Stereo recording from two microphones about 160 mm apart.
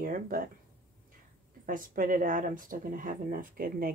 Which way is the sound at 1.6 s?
60° right (ahead or behind).